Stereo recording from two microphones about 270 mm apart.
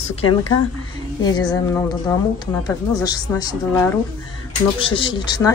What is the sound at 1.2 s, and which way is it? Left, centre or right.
A woman's voice, centre.